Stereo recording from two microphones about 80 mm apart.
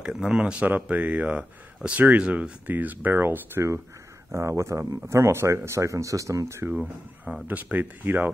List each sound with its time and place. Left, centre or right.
0.0 s speech: centre; by 6.7 s right
6.7 s speech: centre
7.4 s speech: right